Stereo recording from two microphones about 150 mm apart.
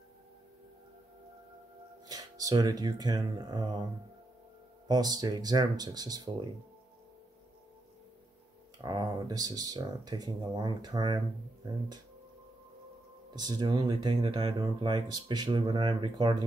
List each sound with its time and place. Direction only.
2.0 s speech: 25° right (ahead or behind)
4.8 s speech: 25° right (ahead or behind)
8.7 s speech: 30° right (ahead or behind)
13.3 s speech: 30° right (ahead or behind)